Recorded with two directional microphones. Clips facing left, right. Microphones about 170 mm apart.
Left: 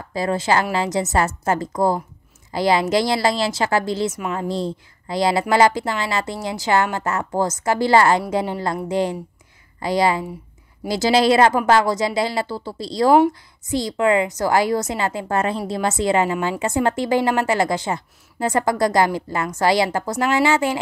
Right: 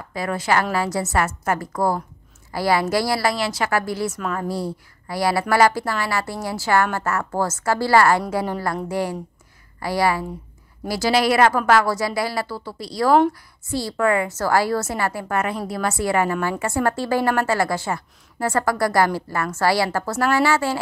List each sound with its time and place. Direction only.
0.1 s a woman's voice: 25° left (ahead or behind)